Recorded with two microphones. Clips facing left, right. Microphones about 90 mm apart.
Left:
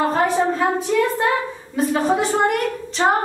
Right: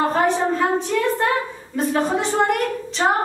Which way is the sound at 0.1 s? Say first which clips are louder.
Even; 5° left (ahead or behind).